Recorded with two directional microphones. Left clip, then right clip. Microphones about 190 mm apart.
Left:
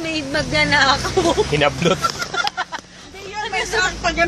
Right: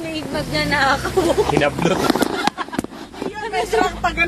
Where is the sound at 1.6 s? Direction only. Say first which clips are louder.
Left 1 dB; 15° left (ahead or behind).